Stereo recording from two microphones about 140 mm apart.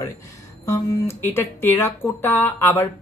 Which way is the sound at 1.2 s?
15° left (ahead or behind).